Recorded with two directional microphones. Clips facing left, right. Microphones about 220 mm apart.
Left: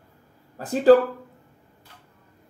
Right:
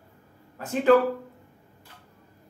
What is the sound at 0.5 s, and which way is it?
Speech, 35° left (ahead or behind).